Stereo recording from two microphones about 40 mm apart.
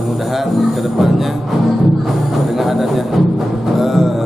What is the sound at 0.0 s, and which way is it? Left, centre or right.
A man's voice, centre.